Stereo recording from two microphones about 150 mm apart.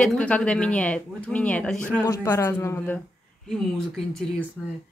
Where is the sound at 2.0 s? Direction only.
20° left (ahead or behind).